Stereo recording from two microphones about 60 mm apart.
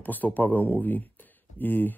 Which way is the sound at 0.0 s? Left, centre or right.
Left.